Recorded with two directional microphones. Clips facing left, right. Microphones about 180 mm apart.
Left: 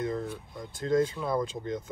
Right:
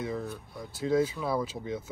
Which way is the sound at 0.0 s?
5° right (ahead or behind).